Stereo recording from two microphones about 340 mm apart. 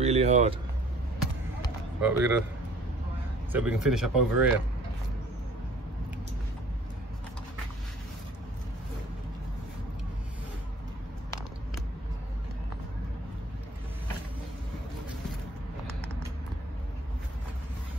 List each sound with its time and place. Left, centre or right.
0.0 s speech: centre
2.0 s speech: centre
3.5 s speech: centre